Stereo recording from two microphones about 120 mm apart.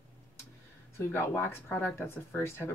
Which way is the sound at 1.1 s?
20° left (ahead or behind).